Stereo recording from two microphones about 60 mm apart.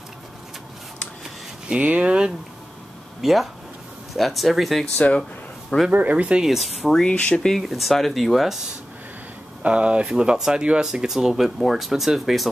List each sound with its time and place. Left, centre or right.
1.7 s speech: right
3.2 s speech: centre
4.9 s speech: left
5.9 s speech: right
6.4 s speech: centre
6.9 s speech: centre
7.5 s speech: centre
9.6 s speech: centre